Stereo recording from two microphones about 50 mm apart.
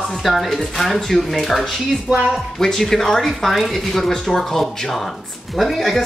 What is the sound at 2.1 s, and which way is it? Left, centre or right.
Speech, right.